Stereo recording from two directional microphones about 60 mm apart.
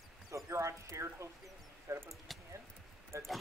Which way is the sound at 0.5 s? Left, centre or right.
Right.